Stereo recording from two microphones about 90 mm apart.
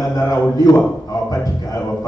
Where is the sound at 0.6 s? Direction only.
40° left (ahead or behind).